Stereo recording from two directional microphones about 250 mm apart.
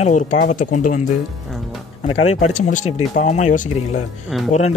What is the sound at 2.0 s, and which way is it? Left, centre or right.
Speech, left.